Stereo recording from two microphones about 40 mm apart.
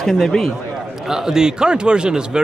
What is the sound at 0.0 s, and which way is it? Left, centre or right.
Speech, centre.